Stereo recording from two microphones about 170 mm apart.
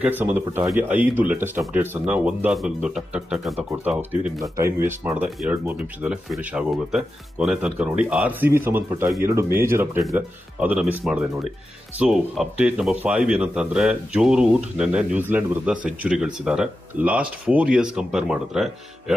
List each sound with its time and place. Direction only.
0.0 s speech: 10° right (ahead or behind)